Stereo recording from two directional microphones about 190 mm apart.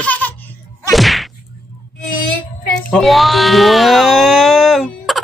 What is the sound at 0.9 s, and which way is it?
Whack, centre (ahead or behind).